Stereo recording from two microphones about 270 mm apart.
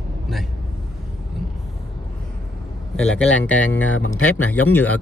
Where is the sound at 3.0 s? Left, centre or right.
Left.